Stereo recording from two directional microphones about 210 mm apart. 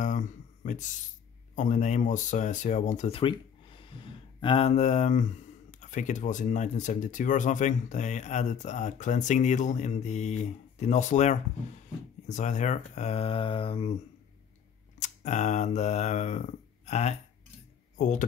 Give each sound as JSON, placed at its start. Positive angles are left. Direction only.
{"t": 0.0, "sound": "a sound", "side_deg": 35}
{"t": 1.5, "sound": "speech", "side_deg": 35}
{"t": 15.0, "sound": "speech", "side_deg": 35}